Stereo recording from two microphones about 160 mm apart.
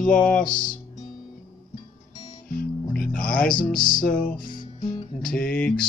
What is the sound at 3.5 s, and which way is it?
Music, 30° left (ahead or behind).